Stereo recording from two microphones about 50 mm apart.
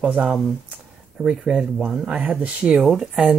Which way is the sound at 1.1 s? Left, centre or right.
Centre.